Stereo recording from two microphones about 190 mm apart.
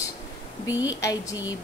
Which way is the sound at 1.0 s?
15° left (ahead or behind).